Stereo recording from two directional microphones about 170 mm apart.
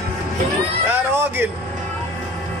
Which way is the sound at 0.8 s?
15° right (ahead or behind).